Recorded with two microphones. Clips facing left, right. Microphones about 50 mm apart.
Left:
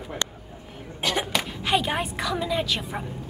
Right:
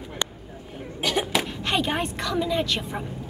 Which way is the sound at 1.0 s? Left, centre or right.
Centre.